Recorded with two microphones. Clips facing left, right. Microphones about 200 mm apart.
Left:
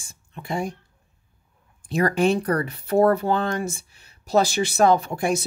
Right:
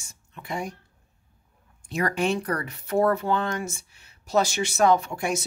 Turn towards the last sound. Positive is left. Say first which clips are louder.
# left 2 dB
turn(degrees=35)  # may be behind; listen again after turning